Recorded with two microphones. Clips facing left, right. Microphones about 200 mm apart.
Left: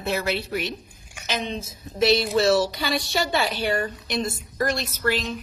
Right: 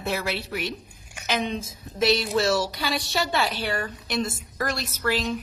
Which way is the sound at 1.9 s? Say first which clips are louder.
Left 2 dB; 10° right (ahead or behind).